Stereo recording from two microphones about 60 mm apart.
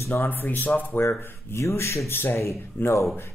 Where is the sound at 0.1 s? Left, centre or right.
Left.